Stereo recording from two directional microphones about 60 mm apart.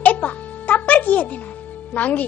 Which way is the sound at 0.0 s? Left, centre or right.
Left.